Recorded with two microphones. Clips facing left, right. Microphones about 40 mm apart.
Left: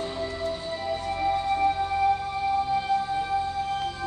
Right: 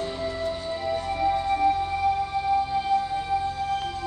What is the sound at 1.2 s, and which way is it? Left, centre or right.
Music, centre.